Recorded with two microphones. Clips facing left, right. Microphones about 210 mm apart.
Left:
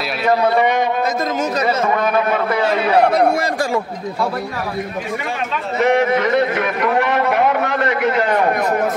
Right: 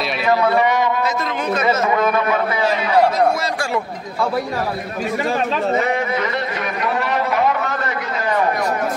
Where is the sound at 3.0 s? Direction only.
65° left (ahead or behind).